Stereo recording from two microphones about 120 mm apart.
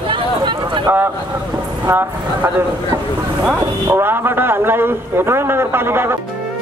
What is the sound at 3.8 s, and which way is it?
A man's voice, 20° right (ahead or behind).